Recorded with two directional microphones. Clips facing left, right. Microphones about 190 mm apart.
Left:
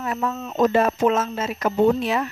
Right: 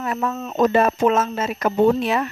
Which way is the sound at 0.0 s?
60° right (ahead or behind).